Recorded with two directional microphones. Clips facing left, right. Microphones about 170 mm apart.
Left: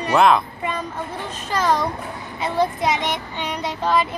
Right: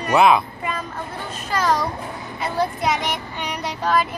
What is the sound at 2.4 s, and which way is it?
A child's voice, 5° right (ahead or behind).